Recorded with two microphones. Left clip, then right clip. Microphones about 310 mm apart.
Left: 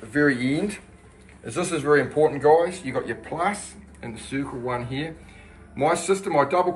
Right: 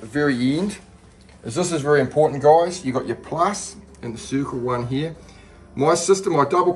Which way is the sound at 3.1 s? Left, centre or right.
Right.